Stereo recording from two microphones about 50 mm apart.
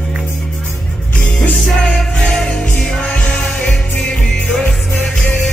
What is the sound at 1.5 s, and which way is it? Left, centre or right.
Music, centre.